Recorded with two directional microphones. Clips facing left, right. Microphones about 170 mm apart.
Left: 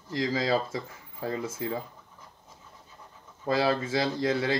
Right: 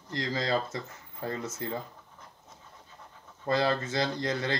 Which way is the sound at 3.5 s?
5° left (ahead or behind).